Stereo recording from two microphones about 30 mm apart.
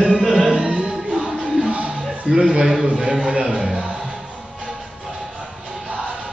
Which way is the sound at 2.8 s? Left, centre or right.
Right.